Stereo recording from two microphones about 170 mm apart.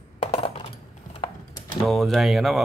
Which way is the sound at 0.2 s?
35° left (ahead or behind).